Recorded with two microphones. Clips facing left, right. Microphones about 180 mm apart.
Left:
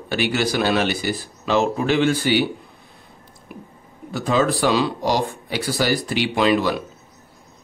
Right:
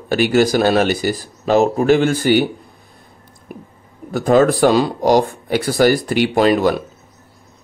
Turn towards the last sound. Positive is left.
turn(degrees=-45)  # may be behind; listen again after turning